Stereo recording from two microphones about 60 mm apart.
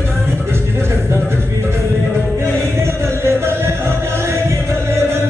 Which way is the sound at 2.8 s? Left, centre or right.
Right.